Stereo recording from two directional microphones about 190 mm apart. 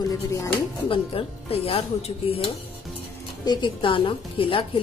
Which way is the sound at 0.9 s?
30° left (ahead or behind).